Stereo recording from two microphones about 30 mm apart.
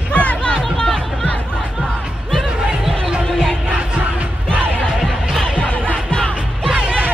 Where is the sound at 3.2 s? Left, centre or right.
Left.